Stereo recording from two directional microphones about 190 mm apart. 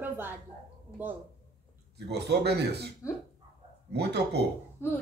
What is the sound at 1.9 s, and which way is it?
Speech, 60° right (ahead or behind).